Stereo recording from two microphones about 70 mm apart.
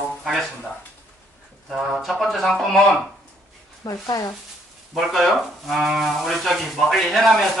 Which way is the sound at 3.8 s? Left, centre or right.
Left.